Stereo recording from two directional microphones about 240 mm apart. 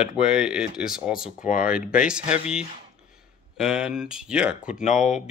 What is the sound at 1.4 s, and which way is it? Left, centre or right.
Speech, left.